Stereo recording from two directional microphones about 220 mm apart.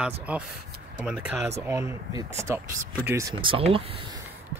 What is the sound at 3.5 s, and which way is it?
Speech, 25° right (ahead or behind).